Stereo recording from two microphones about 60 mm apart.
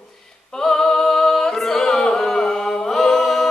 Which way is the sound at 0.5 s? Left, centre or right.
Centre.